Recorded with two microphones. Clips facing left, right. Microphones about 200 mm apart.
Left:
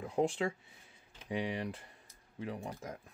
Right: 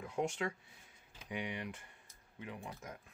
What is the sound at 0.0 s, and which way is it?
Speech, 30° left (ahead or behind).